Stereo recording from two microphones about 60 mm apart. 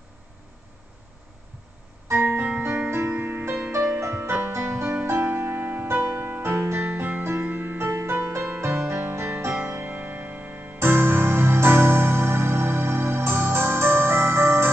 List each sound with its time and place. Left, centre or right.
2.0 s music: right